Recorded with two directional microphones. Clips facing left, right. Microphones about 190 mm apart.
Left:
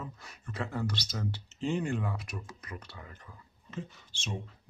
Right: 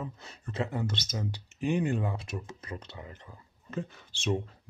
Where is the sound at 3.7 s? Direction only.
60° right (ahead or behind).